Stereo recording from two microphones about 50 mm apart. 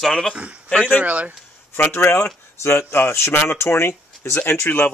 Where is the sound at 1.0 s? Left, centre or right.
Right.